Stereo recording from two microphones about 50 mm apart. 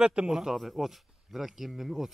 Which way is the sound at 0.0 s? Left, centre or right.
Centre.